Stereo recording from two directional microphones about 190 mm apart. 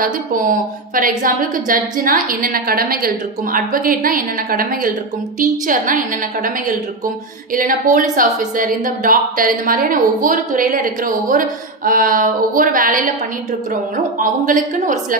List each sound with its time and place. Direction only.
0.0 s a woman's voice: 45° right (ahead or behind)
14.1 s a woman's voice: 45° right (ahead or behind)